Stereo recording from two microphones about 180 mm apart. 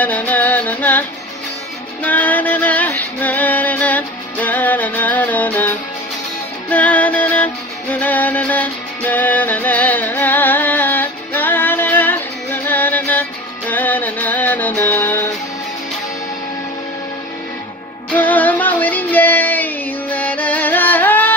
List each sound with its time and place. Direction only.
0.0 s music: 10° left (ahead or behind)
2.0 s music: 10° left (ahead or behind)
18.1 s music: 10° left (ahead or behind)